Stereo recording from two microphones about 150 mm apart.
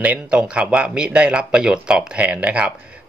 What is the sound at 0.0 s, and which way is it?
Speech, 10° right (ahead or behind).